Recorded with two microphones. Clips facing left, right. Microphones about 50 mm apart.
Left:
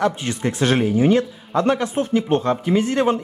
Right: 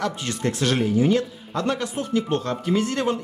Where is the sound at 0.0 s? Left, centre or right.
Left.